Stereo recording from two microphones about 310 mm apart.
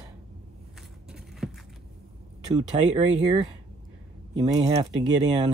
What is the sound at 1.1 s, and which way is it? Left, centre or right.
Vehicle, centre.